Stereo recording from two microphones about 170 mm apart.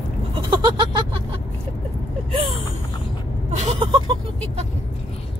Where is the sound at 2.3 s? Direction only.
35° right (ahead or behind).